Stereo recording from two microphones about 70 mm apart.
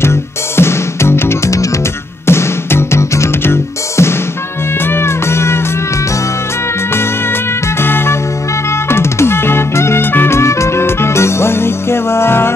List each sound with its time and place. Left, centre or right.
0.0 s music: left
6.9 s music: left